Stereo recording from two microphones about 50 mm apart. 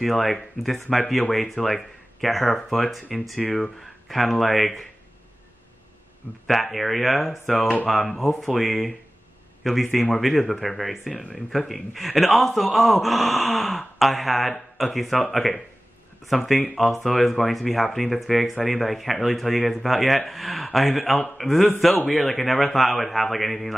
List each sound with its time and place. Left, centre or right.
0.0 s speech: centre
6.4 s a man's voice: centre